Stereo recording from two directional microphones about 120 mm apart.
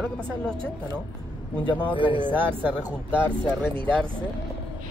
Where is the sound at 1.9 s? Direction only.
45° left (ahead or behind).